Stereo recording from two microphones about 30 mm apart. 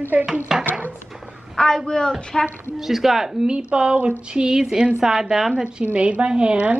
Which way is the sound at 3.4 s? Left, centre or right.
Right.